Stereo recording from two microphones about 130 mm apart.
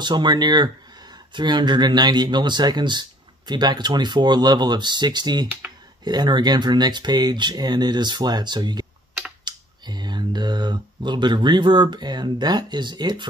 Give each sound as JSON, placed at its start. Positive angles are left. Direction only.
{"t": 0.0, "sound": "speech", "side_deg": -35}